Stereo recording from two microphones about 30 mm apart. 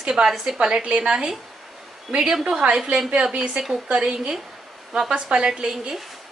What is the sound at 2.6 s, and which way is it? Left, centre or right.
Speech, right.